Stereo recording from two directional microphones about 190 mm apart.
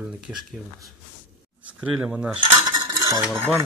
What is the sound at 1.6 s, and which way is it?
Speech, 5° right (ahead or behind).